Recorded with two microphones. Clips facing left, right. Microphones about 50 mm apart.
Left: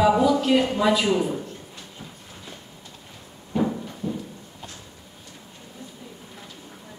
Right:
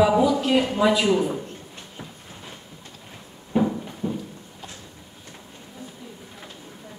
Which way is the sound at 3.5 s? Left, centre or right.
Right.